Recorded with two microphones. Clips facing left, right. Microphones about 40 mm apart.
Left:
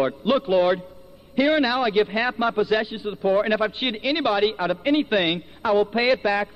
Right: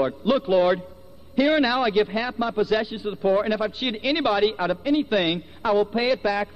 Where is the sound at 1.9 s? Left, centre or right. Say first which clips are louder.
Left 1 dB; centre.